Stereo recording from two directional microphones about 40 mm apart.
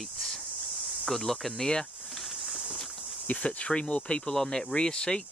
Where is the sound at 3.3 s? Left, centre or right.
Left.